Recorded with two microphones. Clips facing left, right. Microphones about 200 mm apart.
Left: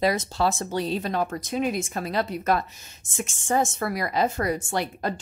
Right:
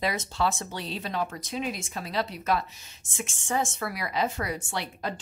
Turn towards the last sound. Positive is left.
turn(degrees=45)  # may be behind; listen again after turning